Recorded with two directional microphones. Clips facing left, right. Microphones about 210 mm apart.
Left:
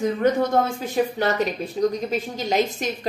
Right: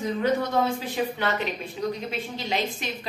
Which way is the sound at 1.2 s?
40° left (ahead or behind).